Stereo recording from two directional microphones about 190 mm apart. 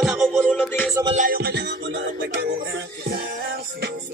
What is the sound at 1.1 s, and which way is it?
Music, 50° right (ahead or behind).